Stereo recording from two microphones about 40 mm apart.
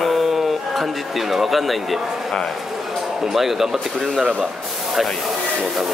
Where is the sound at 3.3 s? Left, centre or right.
Centre.